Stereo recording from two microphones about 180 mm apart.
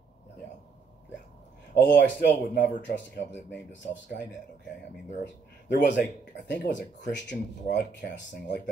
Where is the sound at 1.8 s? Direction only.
80° left.